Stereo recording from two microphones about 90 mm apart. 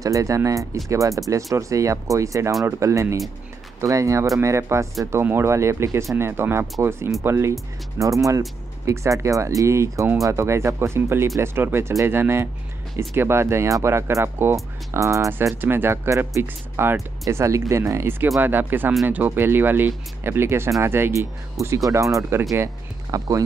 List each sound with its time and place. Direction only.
0.0 s speech: 40° right (ahead or behind)
8.0 s speech: 35° right (ahead or behind)
15.5 s speech: 25° right (ahead or behind); by 23.4 s 40° right (ahead or behind)